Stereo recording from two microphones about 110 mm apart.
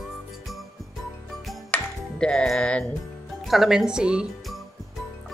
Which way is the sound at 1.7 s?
5° left (ahead or behind).